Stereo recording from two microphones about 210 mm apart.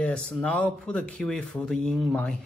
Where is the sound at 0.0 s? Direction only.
5° left (ahead or behind).